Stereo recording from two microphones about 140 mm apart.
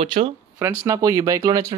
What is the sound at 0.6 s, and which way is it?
Speech, 15° right (ahead or behind).